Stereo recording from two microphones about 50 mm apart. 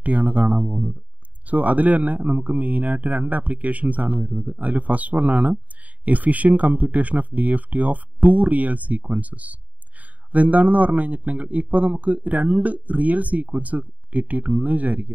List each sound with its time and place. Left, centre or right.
0.0 s a man's voice: right